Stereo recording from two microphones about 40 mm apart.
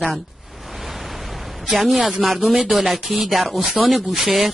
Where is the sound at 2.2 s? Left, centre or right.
Centre.